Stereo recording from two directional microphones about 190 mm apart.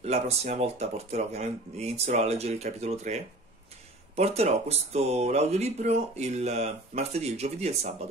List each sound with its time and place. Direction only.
0.0 s speech: 35° right (ahead or behind)